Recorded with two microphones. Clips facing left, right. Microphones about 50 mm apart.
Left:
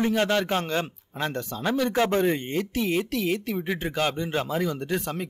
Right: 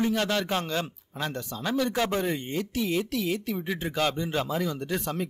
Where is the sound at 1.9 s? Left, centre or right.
Left.